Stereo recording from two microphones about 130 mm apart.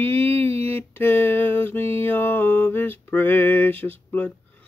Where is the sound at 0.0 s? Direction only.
15° left (ahead or behind).